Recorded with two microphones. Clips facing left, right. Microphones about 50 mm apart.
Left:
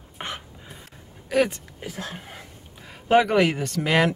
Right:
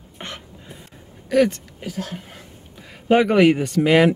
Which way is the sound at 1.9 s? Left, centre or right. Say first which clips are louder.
Right 5 dB; left.